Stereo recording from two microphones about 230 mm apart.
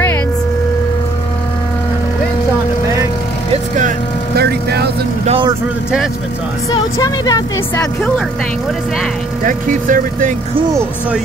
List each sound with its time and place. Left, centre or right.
4.4 s vehicle: right
5.2 s vehicle: right
6.7 s speech: centre
9.4 s speech: right